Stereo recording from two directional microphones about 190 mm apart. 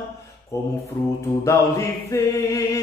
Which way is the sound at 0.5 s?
15° left (ahead or behind).